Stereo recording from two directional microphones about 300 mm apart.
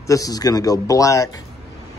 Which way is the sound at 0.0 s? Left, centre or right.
Centre.